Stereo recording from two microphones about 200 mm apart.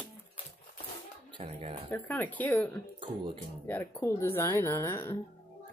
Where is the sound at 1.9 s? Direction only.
10° left (ahead or behind).